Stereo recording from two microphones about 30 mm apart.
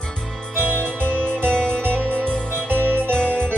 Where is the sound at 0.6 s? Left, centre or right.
Right.